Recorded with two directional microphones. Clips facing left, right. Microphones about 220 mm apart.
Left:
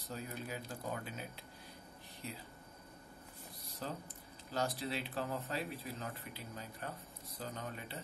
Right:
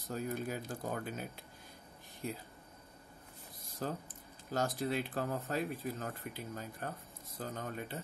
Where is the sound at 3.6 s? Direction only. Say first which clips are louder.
Right 4 dB; 50° right (ahead or behind).